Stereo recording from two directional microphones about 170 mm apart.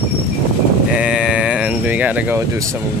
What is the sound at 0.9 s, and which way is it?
Sheep, 5° right (ahead or behind).